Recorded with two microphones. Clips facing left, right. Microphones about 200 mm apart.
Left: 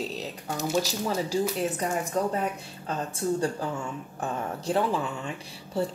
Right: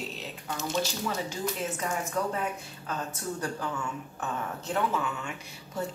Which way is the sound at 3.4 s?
30° left (ahead or behind).